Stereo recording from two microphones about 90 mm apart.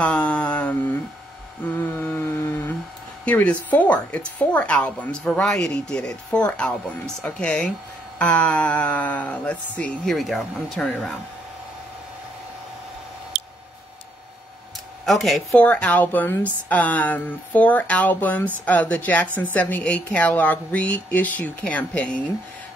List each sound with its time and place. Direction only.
0.0 s a sound: 15° left (ahead or behind)
2.0 s a sound: 25° left (ahead or behind)
3.3 s a woman's voice: 15° left (ahead or behind)
10.0 s speech: centre (ahead or behind)
15.0 s speech: centre (ahead or behind)
15.5 s a woman's voice: 15° left (ahead or behind)